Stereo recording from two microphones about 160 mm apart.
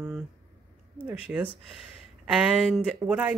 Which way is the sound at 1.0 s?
10° right (ahead or behind).